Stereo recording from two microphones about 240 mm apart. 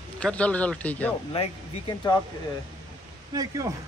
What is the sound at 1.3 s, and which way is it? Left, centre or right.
Speech, left.